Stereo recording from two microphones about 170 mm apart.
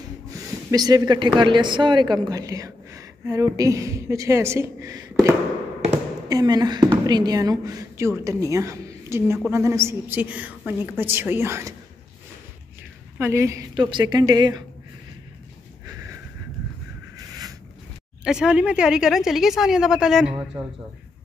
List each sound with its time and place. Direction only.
0.3 s a woman's voice: 20° right (ahead or behind)
13.2 s a woman's voice: 15° right (ahead or behind)
18.2 s a woman's voice: 5° right (ahead or behind)
20.5 s a woman's voice: 20° right (ahead or behind)